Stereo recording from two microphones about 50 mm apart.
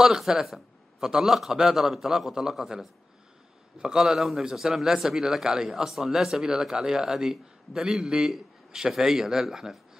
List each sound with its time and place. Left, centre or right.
0.0 s a man's voice: centre
3.7 s speech: centre
4.0 s speech: centre